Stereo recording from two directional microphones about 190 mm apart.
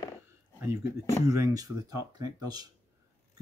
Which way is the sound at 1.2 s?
15° right (ahead or behind).